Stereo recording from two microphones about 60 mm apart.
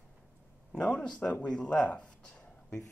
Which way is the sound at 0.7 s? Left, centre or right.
Centre.